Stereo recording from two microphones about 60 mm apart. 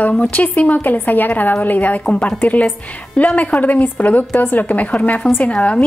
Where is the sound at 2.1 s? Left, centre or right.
Centre.